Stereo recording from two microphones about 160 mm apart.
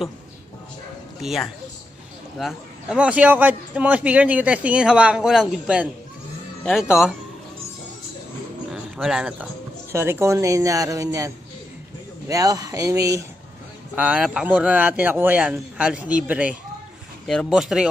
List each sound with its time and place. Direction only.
1.2 s a man's voice: centre (ahead or behind)
8.7 s speech: 5° right (ahead or behind)
9.9 s speech: 15° right (ahead or behind)
13.9 s a man's voice: 10° right (ahead or behind)